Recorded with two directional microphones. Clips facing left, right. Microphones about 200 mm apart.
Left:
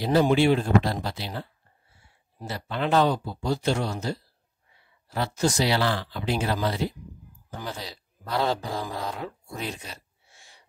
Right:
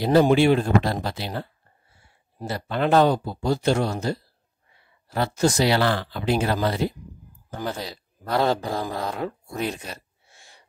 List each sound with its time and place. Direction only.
0.0 s speech: 55° right (ahead or behind)
10.3 s gasp: 50° right (ahead or behind)